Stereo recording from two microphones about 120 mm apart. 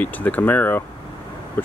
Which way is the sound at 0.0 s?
15° left (ahead or behind).